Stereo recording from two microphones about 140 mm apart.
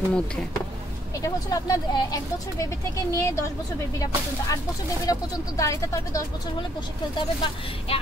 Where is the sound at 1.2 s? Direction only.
25° left (ahead or behind).